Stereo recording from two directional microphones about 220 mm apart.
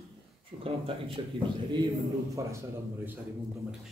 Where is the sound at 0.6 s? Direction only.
25° right (ahead or behind).